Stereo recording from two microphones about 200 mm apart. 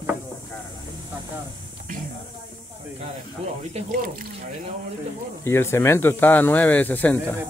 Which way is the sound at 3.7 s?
40° right (ahead or behind).